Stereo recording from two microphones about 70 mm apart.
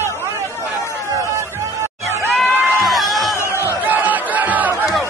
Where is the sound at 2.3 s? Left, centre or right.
Centre.